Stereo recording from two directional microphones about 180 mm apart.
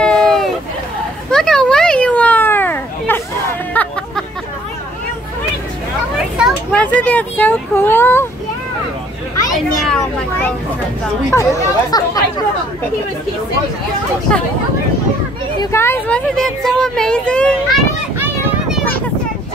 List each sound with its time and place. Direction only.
0.0 s a sound: 5° left (ahead or behind)
1.3 s children playing: 5° left (ahead or behind)
3.8 s a sound: 10° left (ahead or behind)
6.7 s speech: 10° left (ahead or behind)
9.8 s speech: 5° left (ahead or behind)
11.3 s speech: 20° left (ahead or behind)
15.6 s speech: 15° left (ahead or behind)